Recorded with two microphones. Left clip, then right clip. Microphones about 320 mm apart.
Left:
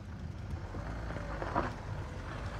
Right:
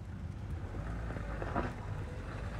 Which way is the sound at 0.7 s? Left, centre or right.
Left.